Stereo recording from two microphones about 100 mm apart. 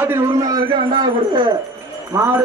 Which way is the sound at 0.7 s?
50° right (ahead or behind).